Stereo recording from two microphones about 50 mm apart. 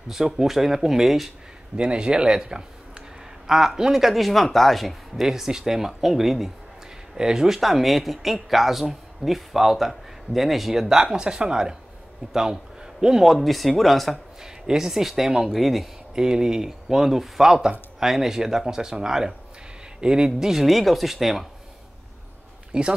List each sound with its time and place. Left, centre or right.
0.1 s speech: centre
1.8 s speech: centre
14.4 s speech: centre
16.2 s speech: centre
22.7 s speech: centre